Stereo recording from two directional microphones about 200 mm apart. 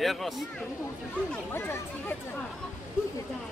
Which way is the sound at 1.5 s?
10° left (ahead or behind).